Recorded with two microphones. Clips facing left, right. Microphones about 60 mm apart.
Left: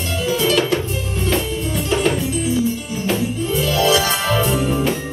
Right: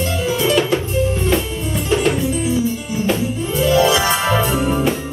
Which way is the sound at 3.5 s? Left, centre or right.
Right.